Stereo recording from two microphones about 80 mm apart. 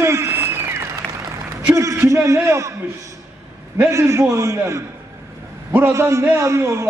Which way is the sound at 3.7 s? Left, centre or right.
Right.